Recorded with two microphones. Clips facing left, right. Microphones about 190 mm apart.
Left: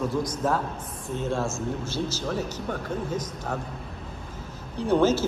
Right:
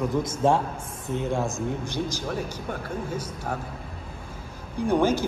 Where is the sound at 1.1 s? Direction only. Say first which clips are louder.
Right 1 dB; 15° right (ahead or behind).